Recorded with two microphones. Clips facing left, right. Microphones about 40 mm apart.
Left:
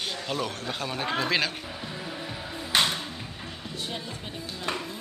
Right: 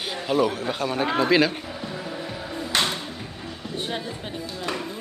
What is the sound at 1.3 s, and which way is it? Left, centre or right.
Music, centre.